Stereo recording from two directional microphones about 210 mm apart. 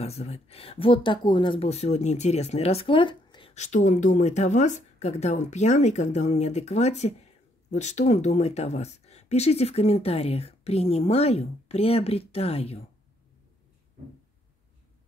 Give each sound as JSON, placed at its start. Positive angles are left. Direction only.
{"t": 0.0, "sound": "speech", "side_deg": 30}